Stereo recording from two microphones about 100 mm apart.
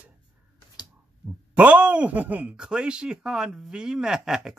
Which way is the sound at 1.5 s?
15° right (ahead or behind).